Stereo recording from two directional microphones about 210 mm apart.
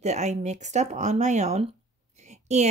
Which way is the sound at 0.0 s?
35° right (ahead or behind).